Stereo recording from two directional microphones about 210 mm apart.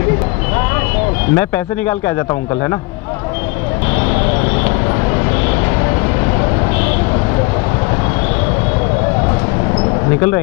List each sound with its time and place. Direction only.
1.3 s speech: 10° left (ahead or behind)